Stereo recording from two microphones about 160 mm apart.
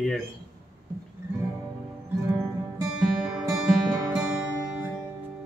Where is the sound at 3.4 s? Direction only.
15° right (ahead or behind).